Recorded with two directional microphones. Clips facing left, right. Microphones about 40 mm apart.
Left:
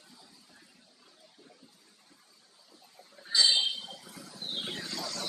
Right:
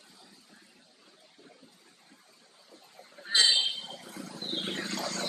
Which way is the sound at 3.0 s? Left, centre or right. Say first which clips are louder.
Right 2 dB; right.